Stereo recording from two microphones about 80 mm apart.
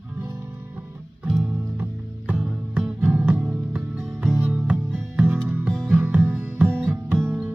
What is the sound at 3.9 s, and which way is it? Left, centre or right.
Music, centre.